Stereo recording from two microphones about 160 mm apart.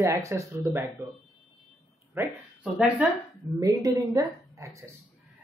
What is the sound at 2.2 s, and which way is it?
Speech, 10° right (ahead or behind).